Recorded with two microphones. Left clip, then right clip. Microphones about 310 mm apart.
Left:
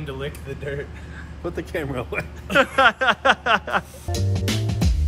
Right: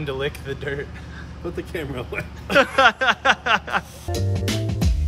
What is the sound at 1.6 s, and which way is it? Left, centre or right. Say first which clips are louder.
Music: left 2 dB; centre.